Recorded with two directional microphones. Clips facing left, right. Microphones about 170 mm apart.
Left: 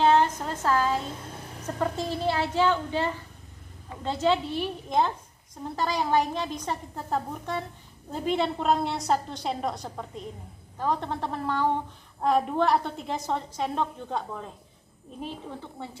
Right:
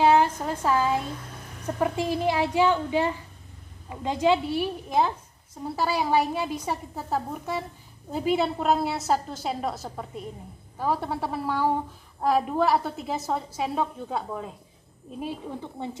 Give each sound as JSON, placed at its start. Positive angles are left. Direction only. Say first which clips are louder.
{"t": 0.0, "sound": "a woman's voice", "louder": "right 1 dB", "side_deg": -10}